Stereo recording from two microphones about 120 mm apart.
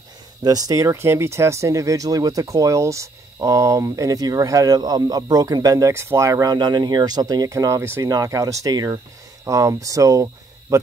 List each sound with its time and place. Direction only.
0.4 s speech: 30° right (ahead or behind)